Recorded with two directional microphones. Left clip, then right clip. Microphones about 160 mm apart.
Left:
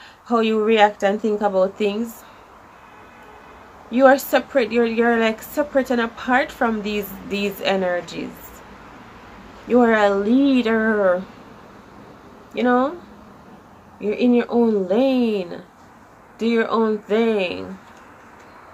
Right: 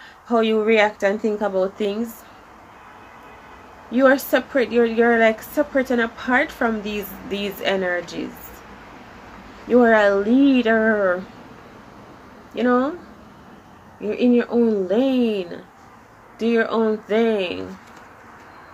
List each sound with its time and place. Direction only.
0.3 s a woman's voice: 20° left (ahead or behind)
3.9 s a woman's voice: 20° left (ahead or behind)
9.7 s a woman's voice: 20° left (ahead or behind)
12.5 s a woman's voice: 20° left (ahead or behind)
14.0 s a woman's voice: 20° left (ahead or behind)